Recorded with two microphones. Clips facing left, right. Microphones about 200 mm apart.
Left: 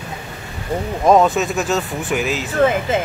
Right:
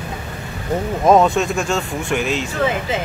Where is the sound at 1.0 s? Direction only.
Centre (ahead or behind).